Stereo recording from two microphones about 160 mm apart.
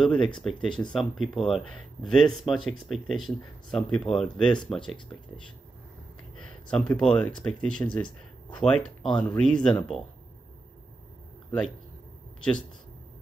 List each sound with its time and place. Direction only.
0.0 s speech: 5° left (ahead or behind)
4.7 s speech: 30° left (ahead or behind)
6.3 s a sound: 5° left (ahead or behind)
7.0 s speech: 5° left (ahead or behind)